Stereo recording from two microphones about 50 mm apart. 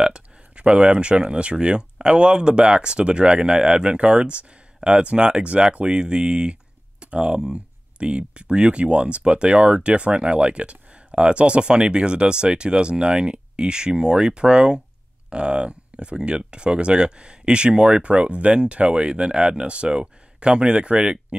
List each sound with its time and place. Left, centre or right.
0.0 s speech: centre